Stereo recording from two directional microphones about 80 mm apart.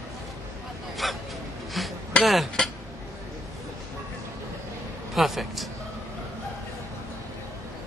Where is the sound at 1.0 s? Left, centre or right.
Centre.